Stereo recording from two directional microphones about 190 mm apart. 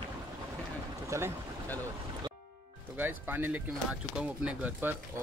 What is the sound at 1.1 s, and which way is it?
Speech, 15° right (ahead or behind).